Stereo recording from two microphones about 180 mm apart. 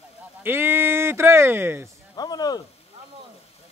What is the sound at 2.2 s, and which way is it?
Speech, 20° left (ahead or behind).